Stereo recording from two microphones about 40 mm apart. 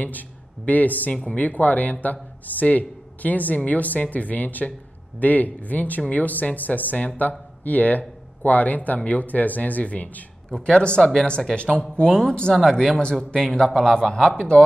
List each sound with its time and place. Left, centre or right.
0.7 s a man's voice: left
10.5 s a man's voice: left